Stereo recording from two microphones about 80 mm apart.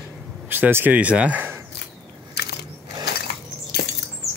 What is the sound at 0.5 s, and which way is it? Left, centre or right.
Speech, right.